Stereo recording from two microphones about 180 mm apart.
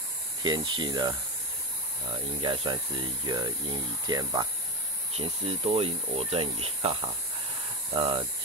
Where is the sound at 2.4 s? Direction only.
30° right (ahead or behind).